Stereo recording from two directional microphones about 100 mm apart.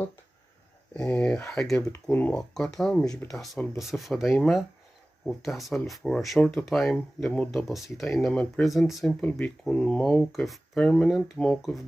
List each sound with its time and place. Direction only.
0.9 s speech: 10° left (ahead or behind)
1.8 s speech: 20° left (ahead or behind)
2.3 s speech: 5° left (ahead or behind)
9.2 s speech: 15° left (ahead or behind)